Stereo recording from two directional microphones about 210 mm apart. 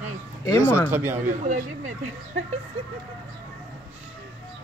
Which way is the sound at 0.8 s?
10° right (ahead or behind).